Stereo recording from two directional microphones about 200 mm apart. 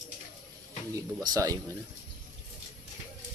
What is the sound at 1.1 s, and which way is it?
Speech, 15° right (ahead or behind).